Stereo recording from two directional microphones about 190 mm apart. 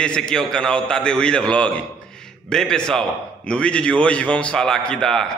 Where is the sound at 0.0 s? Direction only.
5° left (ahead or behind).